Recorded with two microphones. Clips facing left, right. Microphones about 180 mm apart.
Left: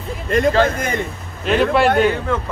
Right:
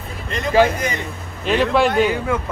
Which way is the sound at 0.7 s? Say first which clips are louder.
Left 2 dB; 55° left (ahead or behind).